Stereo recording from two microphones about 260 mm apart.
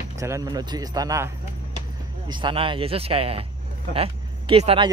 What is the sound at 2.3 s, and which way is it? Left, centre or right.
Speech, centre.